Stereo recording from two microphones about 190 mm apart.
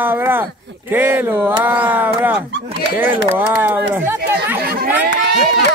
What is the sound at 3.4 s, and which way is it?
Speech, 10° right (ahead or behind).